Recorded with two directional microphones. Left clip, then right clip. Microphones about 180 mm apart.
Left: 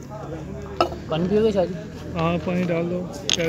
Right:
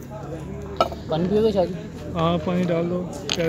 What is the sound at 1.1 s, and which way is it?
A man's voice, 15° right (ahead or behind).